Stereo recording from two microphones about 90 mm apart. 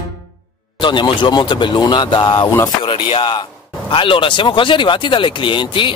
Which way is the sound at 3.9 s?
70° left (ahead or behind).